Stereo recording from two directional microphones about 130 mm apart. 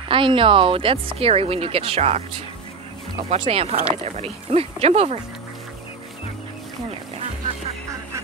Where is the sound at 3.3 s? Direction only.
50° right (ahead or behind).